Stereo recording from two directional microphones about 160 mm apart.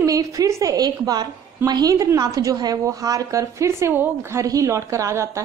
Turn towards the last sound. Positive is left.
turn(degrees=-20)  # may be behind; listen again after turning